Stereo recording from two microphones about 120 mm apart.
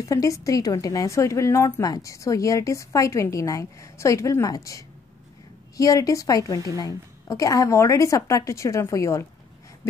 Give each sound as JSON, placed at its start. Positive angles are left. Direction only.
{"t": 0.0, "sound": "a woman's voice", "side_deg": 25}